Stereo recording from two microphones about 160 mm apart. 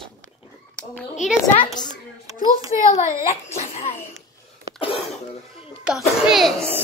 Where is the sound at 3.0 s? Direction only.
45° left (ahead or behind).